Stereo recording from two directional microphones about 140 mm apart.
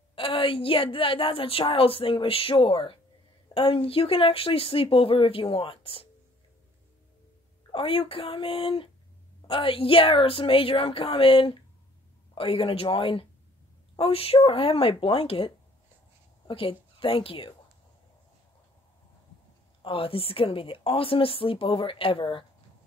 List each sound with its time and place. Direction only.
0.1 s speech: 40° left (ahead or behind)
7.7 s a woman's voice: 40° left (ahead or behind)
19.8 s speech: 40° left (ahead or behind)